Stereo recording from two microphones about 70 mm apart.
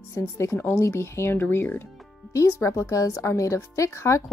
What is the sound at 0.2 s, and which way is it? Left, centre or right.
Speech, left.